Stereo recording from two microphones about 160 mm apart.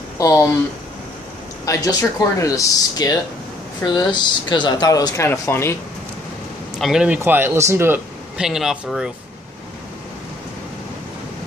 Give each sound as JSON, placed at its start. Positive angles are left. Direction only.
{"t": 0.2, "sound": "speech", "side_deg": 20}
{"t": 1.7, "sound": "speech", "side_deg": 20}
{"t": 6.8, "sound": "speech", "side_deg": -5}
{"t": 8.4, "sound": "speech", "side_deg": -5}